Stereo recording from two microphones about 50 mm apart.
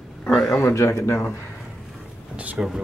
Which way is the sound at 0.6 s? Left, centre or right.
Left.